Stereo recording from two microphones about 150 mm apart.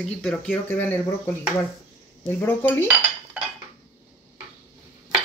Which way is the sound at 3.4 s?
10° right (ahead or behind).